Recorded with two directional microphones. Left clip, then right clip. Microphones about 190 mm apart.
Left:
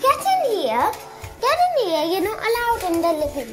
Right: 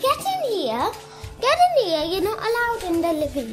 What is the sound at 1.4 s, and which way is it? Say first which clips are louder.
Speech: right 1 dB; 35° right (ahead or behind).